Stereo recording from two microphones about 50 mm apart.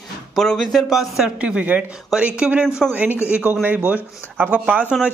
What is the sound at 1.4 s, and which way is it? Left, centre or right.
Speech, right.